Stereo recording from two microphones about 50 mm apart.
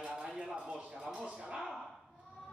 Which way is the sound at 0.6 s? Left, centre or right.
Right.